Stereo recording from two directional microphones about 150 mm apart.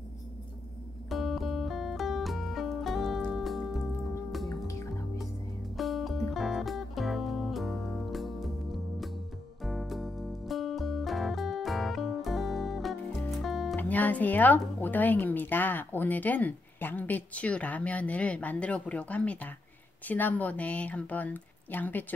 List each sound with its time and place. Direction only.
1.0 s music: centre (ahead or behind)
4.5 s music: 20° left (ahead or behind)
5.8 s music: centre (ahead or behind)
9.6 s music: centre (ahead or behind)
13.7 s speech: 10° left (ahead or behind)